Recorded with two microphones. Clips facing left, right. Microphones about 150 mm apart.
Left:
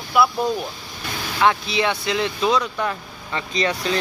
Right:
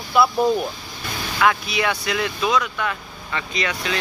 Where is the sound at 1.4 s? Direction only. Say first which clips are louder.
Left 1 dB; 25° left (ahead or behind).